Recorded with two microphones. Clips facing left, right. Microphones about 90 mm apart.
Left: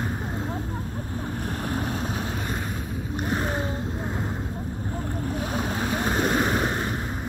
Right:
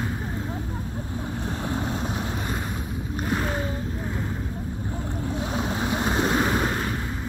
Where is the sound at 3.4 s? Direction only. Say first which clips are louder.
Even; 30° left (ahead or behind).